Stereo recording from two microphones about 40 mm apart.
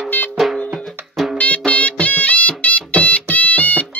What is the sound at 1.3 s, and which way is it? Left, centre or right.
Music, left.